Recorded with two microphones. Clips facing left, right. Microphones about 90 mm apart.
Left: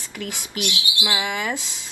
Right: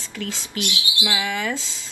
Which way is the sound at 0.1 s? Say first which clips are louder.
Right 1 dB; 20° left (ahead or behind).